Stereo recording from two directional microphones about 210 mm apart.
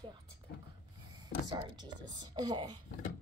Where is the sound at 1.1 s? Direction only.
20° right (ahead or behind).